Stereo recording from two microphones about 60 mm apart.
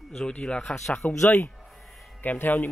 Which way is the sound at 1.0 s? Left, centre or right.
Left.